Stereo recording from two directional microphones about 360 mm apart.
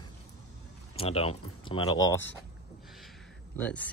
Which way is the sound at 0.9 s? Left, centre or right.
Centre.